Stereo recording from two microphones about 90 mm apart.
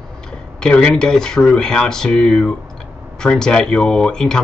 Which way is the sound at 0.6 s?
10° left (ahead or behind).